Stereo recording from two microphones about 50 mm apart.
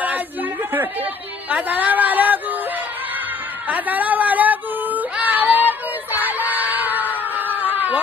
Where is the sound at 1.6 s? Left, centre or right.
Right.